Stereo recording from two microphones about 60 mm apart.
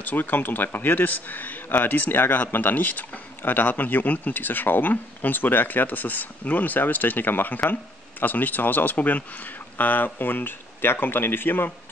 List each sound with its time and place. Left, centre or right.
0.0 s a man's voice: left